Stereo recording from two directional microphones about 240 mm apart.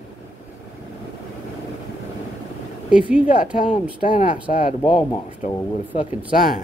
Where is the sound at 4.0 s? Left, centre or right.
Left.